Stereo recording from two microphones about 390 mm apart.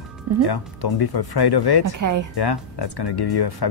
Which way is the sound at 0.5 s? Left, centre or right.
Left.